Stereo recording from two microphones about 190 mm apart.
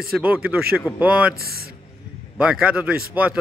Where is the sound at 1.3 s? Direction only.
55° right (ahead or behind).